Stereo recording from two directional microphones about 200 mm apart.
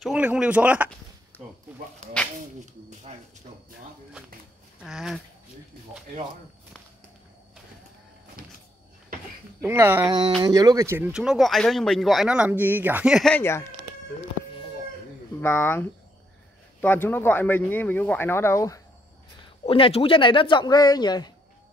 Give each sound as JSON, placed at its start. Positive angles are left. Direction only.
{"t": 0.0, "sound": "speech", "side_deg": -5}
{"t": 4.8, "sound": "speech", "side_deg": 0}
{"t": 8.4, "sound": "vehicle", "side_deg": -50}
{"t": 9.6, "sound": "speech", "side_deg": -10}
{"t": 15.4, "sound": "speech", "side_deg": 10}
{"t": 19.6, "sound": "speech", "side_deg": 30}